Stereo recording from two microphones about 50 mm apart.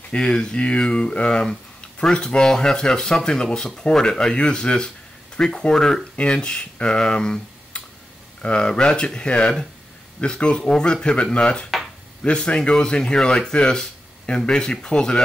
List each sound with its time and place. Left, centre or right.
0.1 s speech: centre